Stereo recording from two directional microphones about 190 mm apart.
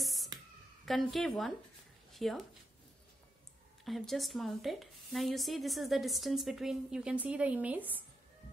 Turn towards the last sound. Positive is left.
turn(degrees=-10)  # may be behind; listen again after turning